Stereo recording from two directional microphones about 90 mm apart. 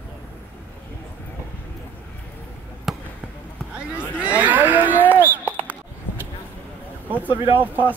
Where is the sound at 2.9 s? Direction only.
Centre (ahead or behind).